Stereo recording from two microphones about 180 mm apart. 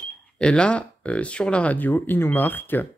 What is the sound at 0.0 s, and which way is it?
Speech, 5° left (ahead or behind).